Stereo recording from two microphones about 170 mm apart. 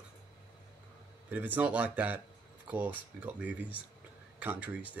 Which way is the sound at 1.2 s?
10° right (ahead or behind).